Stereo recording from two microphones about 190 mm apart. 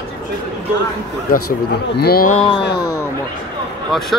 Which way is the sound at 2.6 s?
60° left (ahead or behind).